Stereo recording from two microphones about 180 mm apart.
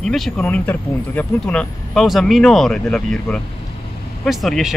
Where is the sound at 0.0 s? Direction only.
Centre (ahead or behind).